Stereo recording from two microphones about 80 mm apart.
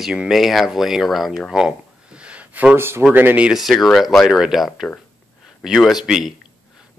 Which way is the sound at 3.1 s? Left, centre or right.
Right.